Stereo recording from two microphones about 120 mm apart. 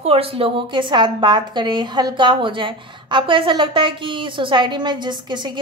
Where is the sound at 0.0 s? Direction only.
55° right (ahead or behind).